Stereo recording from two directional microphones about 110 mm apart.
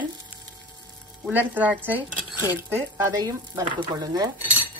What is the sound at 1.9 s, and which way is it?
Speech, 15° right (ahead or behind).